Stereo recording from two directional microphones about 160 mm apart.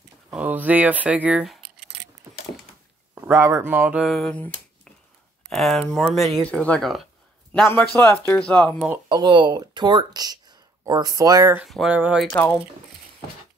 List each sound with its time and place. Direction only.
0.3 s speech: 10° right (ahead or behind)
3.2 s speech: 15° right (ahead or behind)
4.0 s speech: centre (ahead or behind)
7.9 s speech: 20° left (ahead or behind)
8.4 s speech: 5° left (ahead or behind)
9.1 s speech: 30° right (ahead or behind)
11.5 s speech: centre (ahead or behind)
12.3 s speech: 10° left (ahead or behind)